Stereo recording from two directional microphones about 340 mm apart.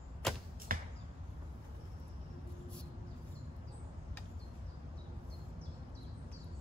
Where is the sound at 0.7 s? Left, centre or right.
Right.